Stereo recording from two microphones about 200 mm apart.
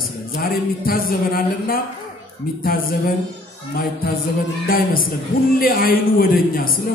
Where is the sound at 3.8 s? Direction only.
45° left (ahead or behind).